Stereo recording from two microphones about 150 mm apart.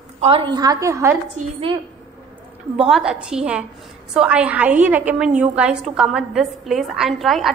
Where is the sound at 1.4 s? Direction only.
50° right (ahead or behind).